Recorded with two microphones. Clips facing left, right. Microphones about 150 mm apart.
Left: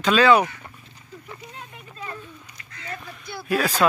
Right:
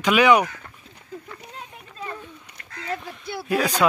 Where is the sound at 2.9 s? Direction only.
25° right (ahead or behind).